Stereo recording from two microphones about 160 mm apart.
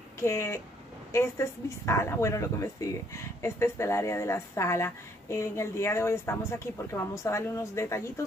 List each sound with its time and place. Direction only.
0.2 s a woman's voice: 15° left (ahead or behind)